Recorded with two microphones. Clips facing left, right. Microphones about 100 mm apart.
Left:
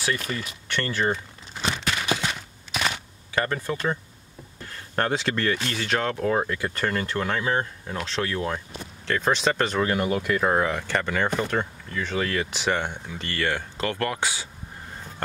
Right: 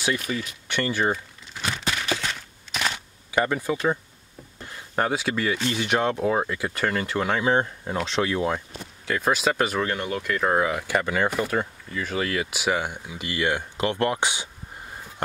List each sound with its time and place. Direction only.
0.7 s speech: 15° right (ahead or behind)
1.1 s crumpling: 30° left (ahead or behind)
2.0 s a sound: 15° left (ahead or behind)
2.7 s a sound: 5° left (ahead or behind)
3.3 s speech: 15° right (ahead or behind)
6.3 s speech: 5° right (ahead or behind)
9.8 s speech: 10° left (ahead or behind); by 14.5 s 20° right (ahead or behind)